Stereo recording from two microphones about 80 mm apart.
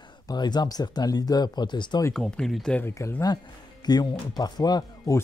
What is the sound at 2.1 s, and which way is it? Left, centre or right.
Speech, centre.